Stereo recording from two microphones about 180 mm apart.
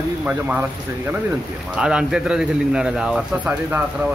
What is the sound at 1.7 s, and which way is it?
Speech, 5° right (ahead or behind).